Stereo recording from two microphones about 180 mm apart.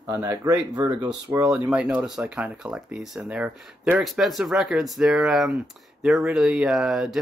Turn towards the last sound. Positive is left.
turn(degrees=-5)  # may be behind; listen again after turning